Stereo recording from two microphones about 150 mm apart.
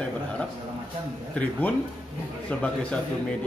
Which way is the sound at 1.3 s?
10° left (ahead or behind).